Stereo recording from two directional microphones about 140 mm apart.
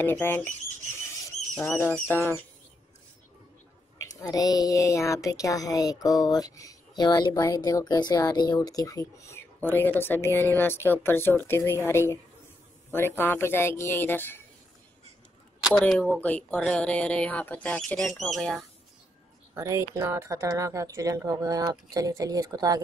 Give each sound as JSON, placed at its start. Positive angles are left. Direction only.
{"t": 0.0, "sound": "speech", "side_deg": 15}
{"t": 1.8, "sound": "speech", "side_deg": 15}
{"t": 4.0, "sound": "speech", "side_deg": 25}
{"t": 13.2, "sound": "speech", "side_deg": 15}
{"t": 15.6, "sound": "speech", "side_deg": 5}
{"t": 19.5, "sound": "speech", "side_deg": -20}